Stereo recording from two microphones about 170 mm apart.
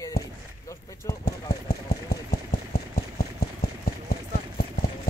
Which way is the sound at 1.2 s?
65° left (ahead or behind).